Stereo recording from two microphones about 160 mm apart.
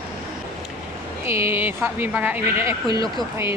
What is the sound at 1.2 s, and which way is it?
Speech, 15° right (ahead or behind).